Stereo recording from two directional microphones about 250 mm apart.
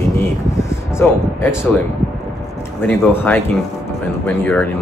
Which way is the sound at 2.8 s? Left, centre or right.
Centre.